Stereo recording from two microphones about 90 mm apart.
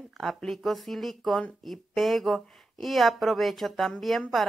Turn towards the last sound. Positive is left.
turn(degrees=0)  # may be behind; listen again after turning